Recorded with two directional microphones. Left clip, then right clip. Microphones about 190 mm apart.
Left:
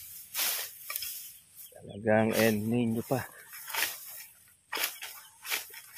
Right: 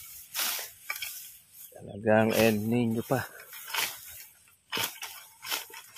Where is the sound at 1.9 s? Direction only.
20° right (ahead or behind).